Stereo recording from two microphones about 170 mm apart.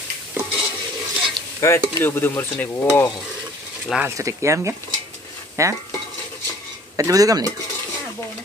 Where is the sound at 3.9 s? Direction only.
15° right (ahead or behind).